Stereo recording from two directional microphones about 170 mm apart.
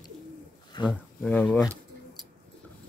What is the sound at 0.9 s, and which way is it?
Speech, 5° left (ahead or behind).